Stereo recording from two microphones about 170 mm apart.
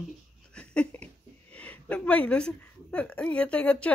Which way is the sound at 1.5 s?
5° left (ahead or behind).